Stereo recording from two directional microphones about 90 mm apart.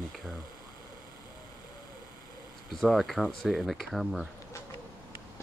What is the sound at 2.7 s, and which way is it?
Speech, centre (ahead or behind).